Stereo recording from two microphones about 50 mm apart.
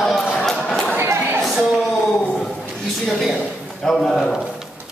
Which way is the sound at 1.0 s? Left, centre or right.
Right.